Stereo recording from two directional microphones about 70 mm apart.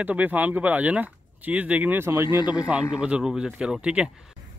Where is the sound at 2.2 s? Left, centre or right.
Left.